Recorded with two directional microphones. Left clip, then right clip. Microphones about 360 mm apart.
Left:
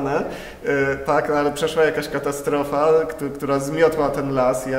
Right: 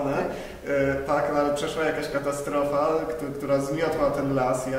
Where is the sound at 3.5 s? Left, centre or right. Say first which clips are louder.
Left 3 dB; left.